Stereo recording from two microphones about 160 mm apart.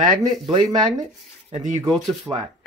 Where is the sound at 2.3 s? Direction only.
10° right (ahead or behind).